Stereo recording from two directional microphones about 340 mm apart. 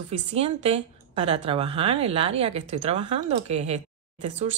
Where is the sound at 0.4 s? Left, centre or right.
Centre.